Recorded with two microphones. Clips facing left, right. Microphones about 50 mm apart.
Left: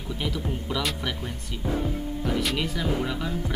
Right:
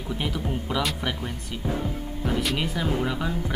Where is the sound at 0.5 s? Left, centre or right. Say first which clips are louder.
Right 2 dB; centre.